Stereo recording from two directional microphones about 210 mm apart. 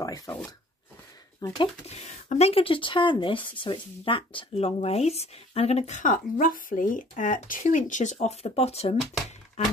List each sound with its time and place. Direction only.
0.0 s speech: 15° left (ahead or behind)
1.4 s speech: 20° left (ahead or behind)
1.9 s speech: 35° left (ahead or behind)